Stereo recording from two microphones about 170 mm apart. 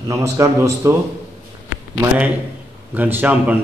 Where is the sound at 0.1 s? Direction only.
15° right (ahead or behind).